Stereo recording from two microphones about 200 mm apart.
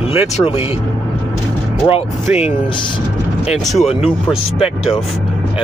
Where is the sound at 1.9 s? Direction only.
30° left (ahead or behind).